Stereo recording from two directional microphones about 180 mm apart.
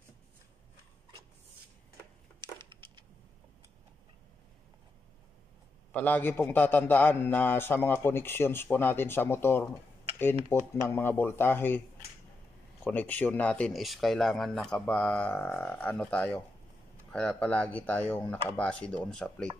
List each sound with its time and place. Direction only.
2.4 s wood: 25° right (ahead or behind)
5.9 s a man's voice: 10° left (ahead or behind)
12.8 s a man's voice: 10° left (ahead or behind)